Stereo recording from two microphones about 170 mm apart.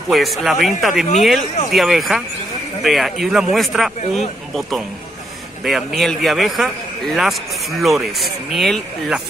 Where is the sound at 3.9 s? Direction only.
40° left (ahead or behind).